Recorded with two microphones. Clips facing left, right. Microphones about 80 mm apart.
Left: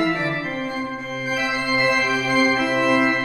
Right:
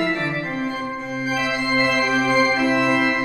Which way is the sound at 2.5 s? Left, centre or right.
Centre.